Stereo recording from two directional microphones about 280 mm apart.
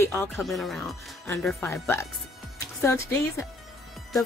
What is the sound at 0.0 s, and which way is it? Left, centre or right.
Speech, centre.